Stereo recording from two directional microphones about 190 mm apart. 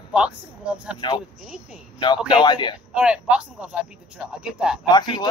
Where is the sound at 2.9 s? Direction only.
5° right (ahead or behind).